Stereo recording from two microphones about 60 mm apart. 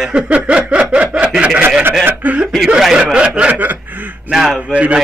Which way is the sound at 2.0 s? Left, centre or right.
Right.